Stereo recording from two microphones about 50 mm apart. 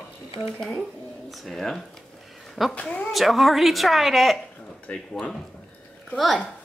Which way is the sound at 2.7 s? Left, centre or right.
Left.